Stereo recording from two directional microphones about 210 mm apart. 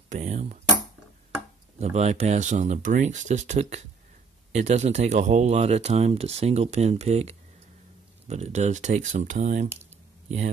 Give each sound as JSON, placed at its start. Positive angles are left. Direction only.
{"t": 0.1, "sound": "speech", "side_deg": -30}
{"t": 1.8, "sound": "speech", "side_deg": -30}